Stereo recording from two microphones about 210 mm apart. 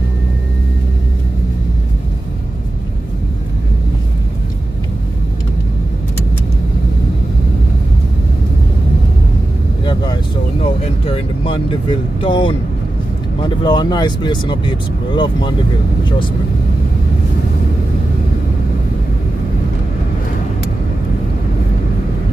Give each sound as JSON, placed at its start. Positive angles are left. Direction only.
{"t": 11.1, "sound": "speech", "side_deg": 25}